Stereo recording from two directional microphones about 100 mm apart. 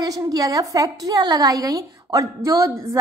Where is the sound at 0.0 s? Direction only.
40° right (ahead or behind).